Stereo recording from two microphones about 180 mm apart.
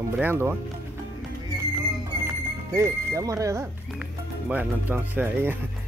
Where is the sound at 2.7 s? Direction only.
15° right (ahead or behind).